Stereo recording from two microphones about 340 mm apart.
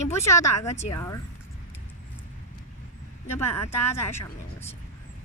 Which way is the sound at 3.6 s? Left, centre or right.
Centre.